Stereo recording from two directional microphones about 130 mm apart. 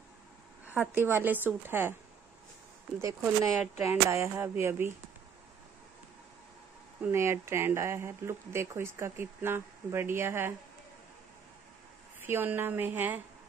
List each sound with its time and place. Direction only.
0.7 s a woman's voice: 15° right (ahead or behind)
3.0 s speech: 20° right (ahead or behind)
7.0 s speech: 20° right (ahead or behind)
12.2 s a woman's voice: 15° right (ahead or behind)